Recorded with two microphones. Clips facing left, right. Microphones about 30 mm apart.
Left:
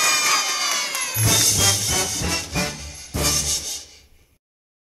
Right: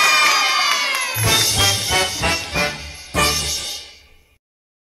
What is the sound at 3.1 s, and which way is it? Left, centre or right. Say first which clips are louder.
Music: right 7 dB; right.